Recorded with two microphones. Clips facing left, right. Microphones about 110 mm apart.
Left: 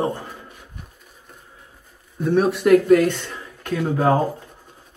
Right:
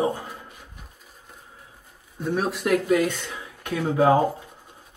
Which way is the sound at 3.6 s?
15° right (ahead or behind).